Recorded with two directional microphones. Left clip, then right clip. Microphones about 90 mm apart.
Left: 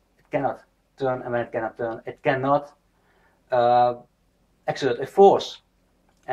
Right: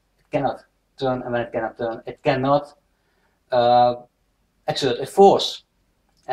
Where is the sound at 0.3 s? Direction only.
5° left (ahead or behind).